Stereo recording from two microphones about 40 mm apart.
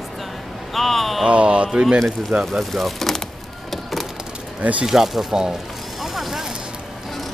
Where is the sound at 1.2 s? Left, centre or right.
Right.